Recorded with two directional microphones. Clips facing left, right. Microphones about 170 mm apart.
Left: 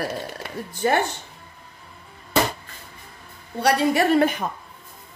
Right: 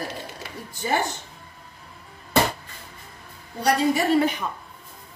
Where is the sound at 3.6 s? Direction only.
65° left (ahead or behind).